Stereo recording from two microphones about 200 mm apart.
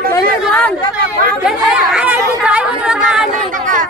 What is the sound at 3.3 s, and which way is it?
Speech, 40° right (ahead or behind).